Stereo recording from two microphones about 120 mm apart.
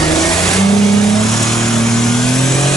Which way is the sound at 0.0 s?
5° left (ahead or behind).